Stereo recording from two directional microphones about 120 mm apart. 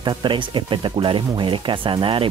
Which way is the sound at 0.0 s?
40° right (ahead or behind).